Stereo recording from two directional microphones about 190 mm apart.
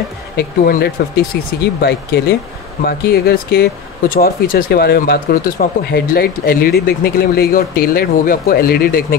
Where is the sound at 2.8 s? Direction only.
55° left (ahead or behind).